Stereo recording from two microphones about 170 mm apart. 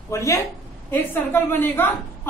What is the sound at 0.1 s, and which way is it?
A woman's voice, 15° left (ahead or behind).